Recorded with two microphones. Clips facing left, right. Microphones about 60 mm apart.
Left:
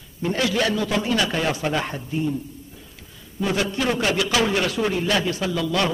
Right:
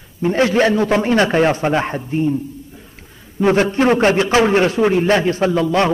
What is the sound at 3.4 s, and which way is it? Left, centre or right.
A man's voice, right.